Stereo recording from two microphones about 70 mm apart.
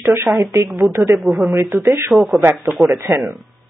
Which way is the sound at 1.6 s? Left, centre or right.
Right.